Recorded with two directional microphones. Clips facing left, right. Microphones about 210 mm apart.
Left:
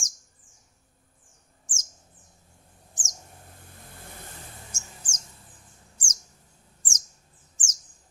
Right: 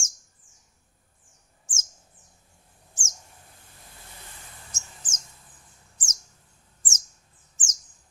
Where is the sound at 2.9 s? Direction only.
20° left (ahead or behind).